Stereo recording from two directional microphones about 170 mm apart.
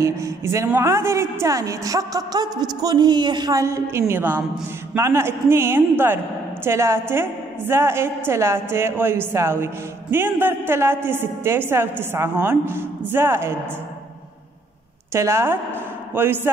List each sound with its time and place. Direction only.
0.0 s a woman's voice: 15° right (ahead or behind)
15.1 s speech: 15° right (ahead or behind)